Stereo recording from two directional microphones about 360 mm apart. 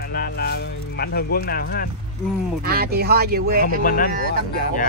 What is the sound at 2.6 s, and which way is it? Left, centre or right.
Speech, right.